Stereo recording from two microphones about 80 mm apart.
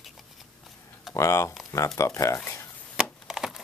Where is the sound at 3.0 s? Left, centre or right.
Centre.